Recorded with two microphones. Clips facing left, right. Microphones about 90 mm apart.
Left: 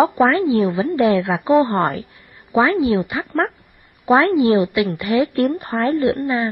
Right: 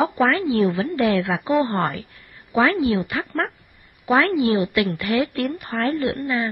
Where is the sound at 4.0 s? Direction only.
35° left (ahead or behind).